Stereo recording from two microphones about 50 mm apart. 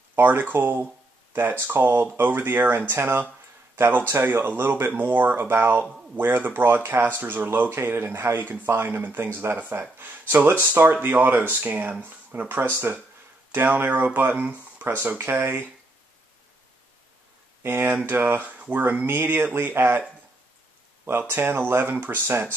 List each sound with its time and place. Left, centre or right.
0.1 s speech: right
7.7 s speech: right
14.9 s speech: right
17.6 s speech: right
21.3 s speech: right